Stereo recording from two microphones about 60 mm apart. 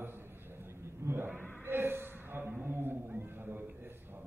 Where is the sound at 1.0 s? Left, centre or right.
Right.